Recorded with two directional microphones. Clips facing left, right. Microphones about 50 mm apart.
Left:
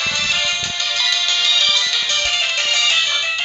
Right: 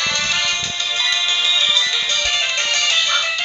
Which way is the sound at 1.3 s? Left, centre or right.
Left.